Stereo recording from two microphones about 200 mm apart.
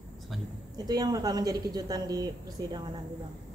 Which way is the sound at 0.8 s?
20° right (ahead or behind).